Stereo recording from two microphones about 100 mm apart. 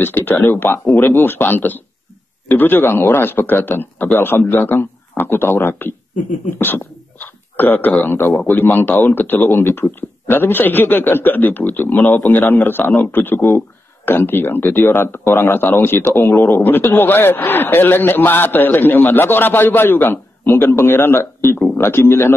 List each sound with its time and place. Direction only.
0.0 s speech: 20° left (ahead or behind)